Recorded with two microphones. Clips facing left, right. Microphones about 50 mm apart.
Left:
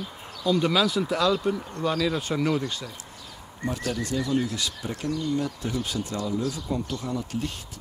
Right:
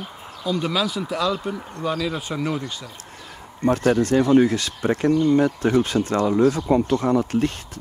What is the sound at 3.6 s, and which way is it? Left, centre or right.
Speech, right.